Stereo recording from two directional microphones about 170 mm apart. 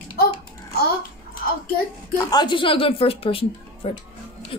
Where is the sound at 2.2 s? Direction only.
25° left (ahead or behind).